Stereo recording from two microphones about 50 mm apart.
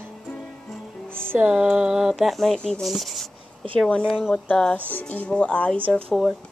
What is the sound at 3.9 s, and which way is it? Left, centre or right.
Speech, left.